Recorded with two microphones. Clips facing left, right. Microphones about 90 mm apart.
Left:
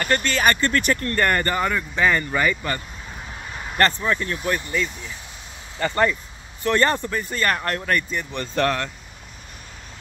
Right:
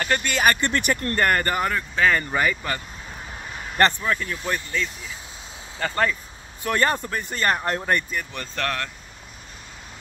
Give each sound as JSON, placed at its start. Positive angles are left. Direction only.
{"t": 0.0, "sound": "speech", "side_deg": -10}
{"t": 1.1, "sound": "speech", "side_deg": -10}
{"t": 4.0, "sound": "speech", "side_deg": 5}
{"t": 5.8, "sound": "speech", "side_deg": 0}
{"t": 8.1, "sound": "speech", "side_deg": -5}
{"t": 8.5, "sound": "speech", "side_deg": 10}